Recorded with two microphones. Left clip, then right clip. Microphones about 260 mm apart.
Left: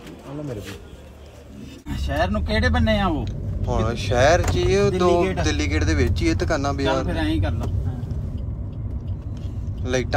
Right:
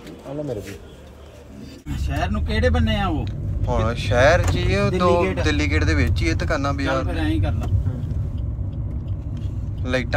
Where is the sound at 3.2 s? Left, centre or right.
Centre.